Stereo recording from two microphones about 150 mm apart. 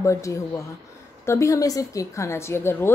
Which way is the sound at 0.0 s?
20° left (ahead or behind).